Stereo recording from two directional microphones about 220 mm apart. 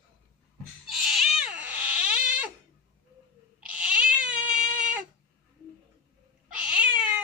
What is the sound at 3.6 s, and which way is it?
Cat, 5° right (ahead or behind).